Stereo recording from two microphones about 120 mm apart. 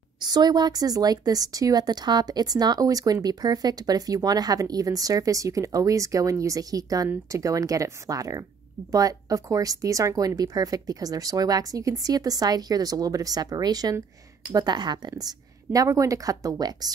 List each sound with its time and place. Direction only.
0.2 s speech: 35° right (ahead or behind)